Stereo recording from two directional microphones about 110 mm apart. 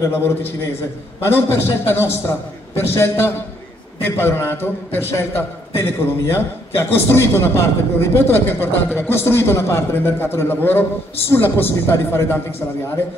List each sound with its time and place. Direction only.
0.1 s a man's voice: 20° left (ahead or behind)